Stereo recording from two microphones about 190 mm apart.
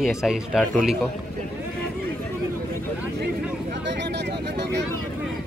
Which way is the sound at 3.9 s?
65° right (ahead or behind).